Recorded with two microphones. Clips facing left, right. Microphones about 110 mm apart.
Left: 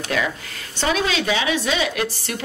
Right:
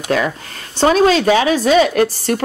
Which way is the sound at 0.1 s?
40° right (ahead or behind).